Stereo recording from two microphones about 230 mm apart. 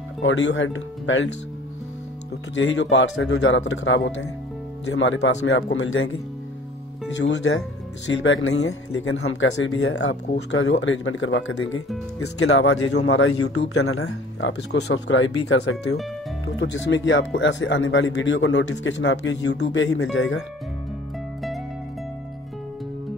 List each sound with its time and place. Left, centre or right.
0.2 s speech: left
2.5 s speech: left
7.2 s speech: left
10.3 s speech: left
16.5 s speech: left